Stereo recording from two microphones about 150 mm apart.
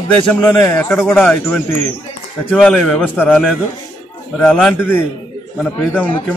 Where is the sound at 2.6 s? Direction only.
5° left (ahead or behind).